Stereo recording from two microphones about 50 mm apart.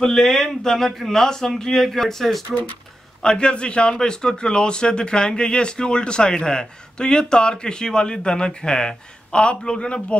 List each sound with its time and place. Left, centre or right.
0.0 s a man's voice: centre
3.2 s a man's voice: centre